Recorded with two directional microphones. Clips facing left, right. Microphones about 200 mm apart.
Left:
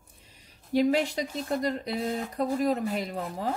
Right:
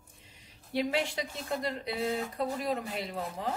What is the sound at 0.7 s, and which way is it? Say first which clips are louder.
Speech: left 7 dB; 40° left (ahead or behind).